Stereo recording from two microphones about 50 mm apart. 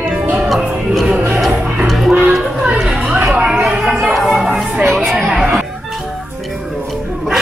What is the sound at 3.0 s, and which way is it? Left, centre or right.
Chatter, centre.